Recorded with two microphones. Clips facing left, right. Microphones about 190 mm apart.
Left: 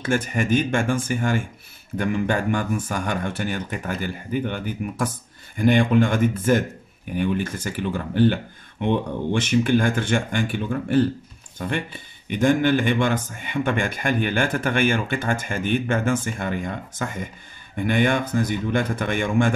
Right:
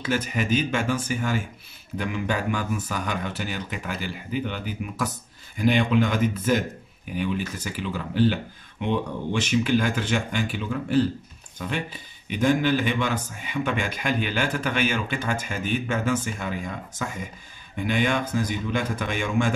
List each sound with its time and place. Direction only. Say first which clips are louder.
0.1 s speech: left 3 dB; 50° left (ahead or behind)